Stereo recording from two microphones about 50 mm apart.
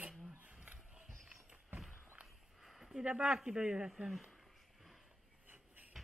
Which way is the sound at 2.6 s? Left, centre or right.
Centre.